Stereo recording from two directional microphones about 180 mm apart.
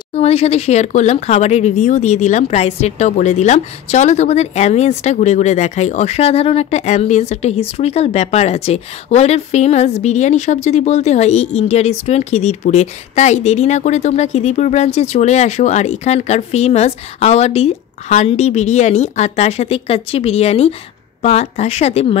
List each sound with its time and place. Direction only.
0.1 s speech: 35° left (ahead or behind)